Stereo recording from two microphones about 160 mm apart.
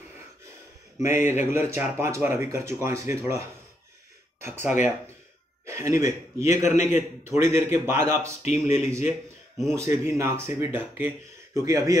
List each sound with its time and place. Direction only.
1.0 s speech: 15° right (ahead or behind)
4.5 s a man's voice: 15° right (ahead or behind)
6.5 s a man's voice: 45° left (ahead or behind)
7.2 s speech: 15° right (ahead or behind)
8.4 s a man's voice: 45° left (ahead or behind)
8.7 s speech: 15° right (ahead or behind)